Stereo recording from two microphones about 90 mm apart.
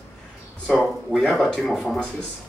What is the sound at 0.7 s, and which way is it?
Speech, 5° left (ahead or behind).